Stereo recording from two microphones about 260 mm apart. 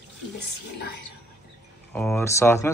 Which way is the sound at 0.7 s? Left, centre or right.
Left.